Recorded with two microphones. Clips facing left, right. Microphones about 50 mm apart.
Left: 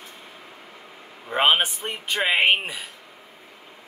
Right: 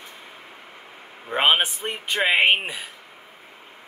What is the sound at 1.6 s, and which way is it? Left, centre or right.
Speech, right.